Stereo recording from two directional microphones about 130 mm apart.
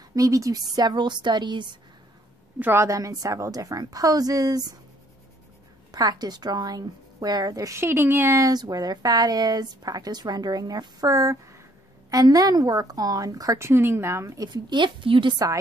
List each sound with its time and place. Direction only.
0.1 s a woman's voice: 25° right (ahead or behind)
2.6 s a woman's voice: 20° right (ahead or behind)
5.9 s a woman's voice: 30° right (ahead or behind)